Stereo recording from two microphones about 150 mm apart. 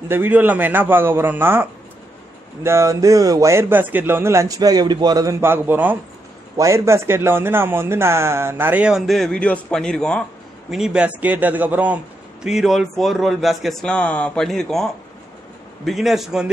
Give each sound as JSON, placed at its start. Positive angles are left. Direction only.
{"t": 0.1, "sound": "a man's voice", "side_deg": -10}
{"t": 10.7, "sound": "a man's voice", "side_deg": -5}